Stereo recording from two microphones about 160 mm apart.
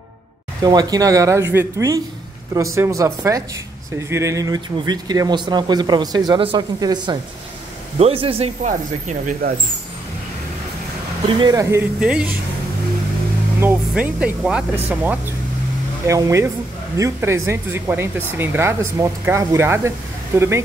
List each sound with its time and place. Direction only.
0.6 s a man's voice: 25° right (ahead or behind)
8.6 s speech: 50° right (ahead or behind)
11.3 s speech: 30° right (ahead or behind)
12.0 s speech: 5° right (ahead or behind)
13.6 s speech: 10° right (ahead or behind)
16.1 s speech: 20° right (ahead or behind)